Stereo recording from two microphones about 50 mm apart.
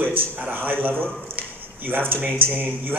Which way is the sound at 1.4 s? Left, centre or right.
Right.